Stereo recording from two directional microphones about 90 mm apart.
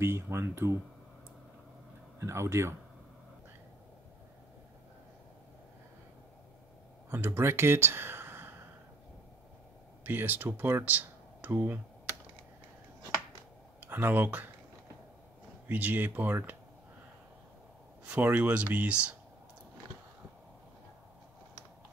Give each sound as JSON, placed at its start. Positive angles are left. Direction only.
{"t": 0.0, "sound": "speech", "side_deg": -30}
{"t": 2.1, "sound": "speech", "side_deg": -30}
{"t": 7.1, "sound": "speech", "side_deg": -25}
{"t": 10.0, "sound": "speech", "side_deg": -20}
{"t": 13.7, "sound": "speech", "side_deg": -25}
{"t": 15.7, "sound": "speech", "side_deg": -20}
{"t": 18.0, "sound": "speech", "side_deg": -20}